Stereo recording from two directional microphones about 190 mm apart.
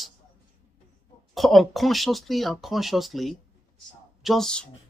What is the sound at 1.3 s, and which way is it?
Speech, centre (ahead or behind).